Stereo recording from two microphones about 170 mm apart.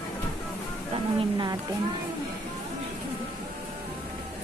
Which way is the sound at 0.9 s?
25° right (ahead or behind).